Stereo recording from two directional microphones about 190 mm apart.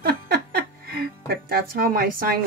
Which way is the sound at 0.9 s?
50° right (ahead or behind).